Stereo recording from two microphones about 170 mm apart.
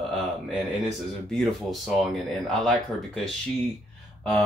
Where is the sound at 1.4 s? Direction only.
Centre (ahead or behind).